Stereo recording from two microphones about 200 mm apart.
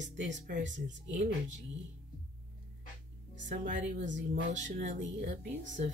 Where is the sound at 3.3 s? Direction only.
40° right (ahead or behind).